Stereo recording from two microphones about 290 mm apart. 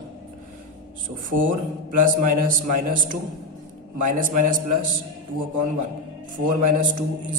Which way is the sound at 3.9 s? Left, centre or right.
Right.